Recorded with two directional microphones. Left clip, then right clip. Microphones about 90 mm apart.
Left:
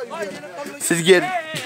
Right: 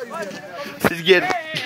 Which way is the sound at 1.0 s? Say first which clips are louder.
Left 2 dB; 35° left (ahead or behind).